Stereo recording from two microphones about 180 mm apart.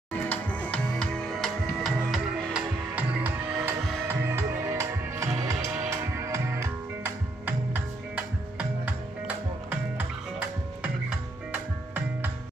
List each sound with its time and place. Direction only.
0.3 s music: 5° left (ahead or behind)
4.0 s music: 15° right (ahead or behind)
11.5 s music: 10° right (ahead or behind)